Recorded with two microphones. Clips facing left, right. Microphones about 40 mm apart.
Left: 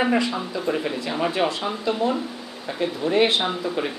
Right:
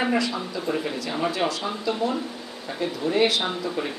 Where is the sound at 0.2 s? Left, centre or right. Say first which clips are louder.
Left 2 dB; centre.